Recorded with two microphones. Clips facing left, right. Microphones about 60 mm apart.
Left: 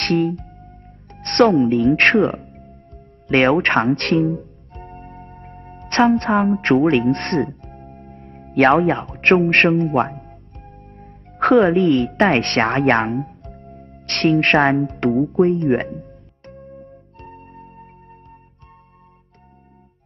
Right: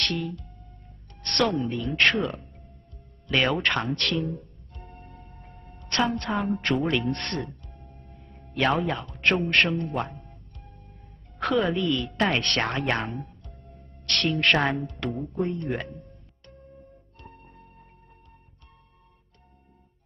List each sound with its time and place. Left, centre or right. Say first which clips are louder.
0.0 s music: left 11 dB; left
1.2 s speech: left 11 dB; left
3.3 s speech: left 9 dB; left
4.4 s music: left 10 dB; left
6.9 s speech: left 10 dB; left
7.4 s music: left 11 dB; left
8.1 s music: left 10 dB; left
8.5 s speech: left 10 dB; left
16.7 s music: left 10 dB; left